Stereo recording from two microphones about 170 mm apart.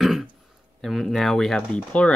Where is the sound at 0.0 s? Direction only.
Centre (ahead or behind).